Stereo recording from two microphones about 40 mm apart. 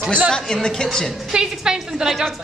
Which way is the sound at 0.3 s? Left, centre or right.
Centre.